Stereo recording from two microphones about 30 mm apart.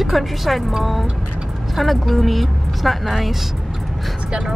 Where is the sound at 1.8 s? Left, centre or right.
Centre.